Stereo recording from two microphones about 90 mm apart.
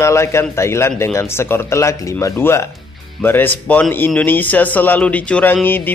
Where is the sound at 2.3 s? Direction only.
25° left (ahead or behind).